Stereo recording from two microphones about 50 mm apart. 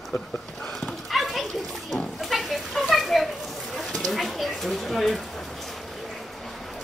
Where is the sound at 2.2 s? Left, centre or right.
Centre.